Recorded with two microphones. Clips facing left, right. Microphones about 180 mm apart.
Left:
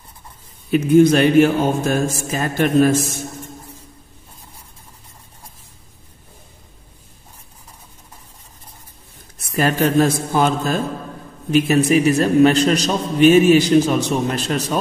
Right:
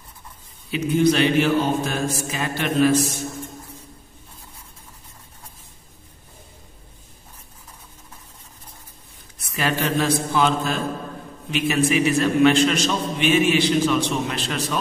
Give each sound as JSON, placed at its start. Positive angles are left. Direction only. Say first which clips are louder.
{"t": 0.7, "sound": "a man's voice", "louder": "left 7 dB", "side_deg": 50}
{"t": 9.4, "sound": "a man's voice", "louder": "left 6 dB", "side_deg": 45}